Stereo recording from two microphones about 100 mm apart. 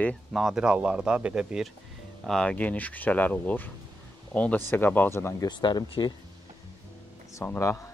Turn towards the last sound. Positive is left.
turn(degrees=30)  # may be behind; listen again after turning